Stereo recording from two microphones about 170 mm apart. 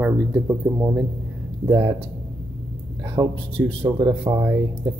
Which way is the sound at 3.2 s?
25° right (ahead or behind).